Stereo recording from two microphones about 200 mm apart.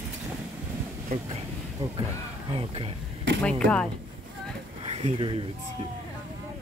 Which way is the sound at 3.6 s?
5° left (ahead or behind).